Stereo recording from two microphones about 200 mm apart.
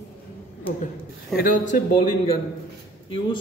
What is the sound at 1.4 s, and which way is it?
Speech, 40° left (ahead or behind).